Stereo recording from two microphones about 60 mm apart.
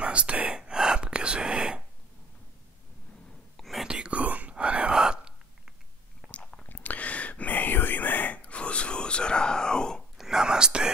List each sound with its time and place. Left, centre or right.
0.0 s whispering: centre
3.5 s whispering: centre
3.8 s whispering: centre
6.2 s chewing: centre
6.7 s whispering: left; by 10.0 s centre
10.1 s whispering: centre